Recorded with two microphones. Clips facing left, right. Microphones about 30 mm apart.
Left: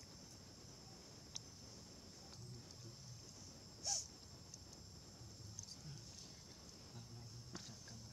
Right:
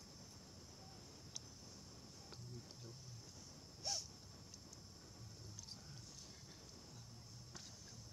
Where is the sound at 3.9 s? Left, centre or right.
Right.